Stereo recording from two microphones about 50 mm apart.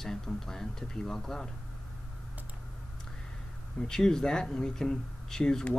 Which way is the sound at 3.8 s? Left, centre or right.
Centre.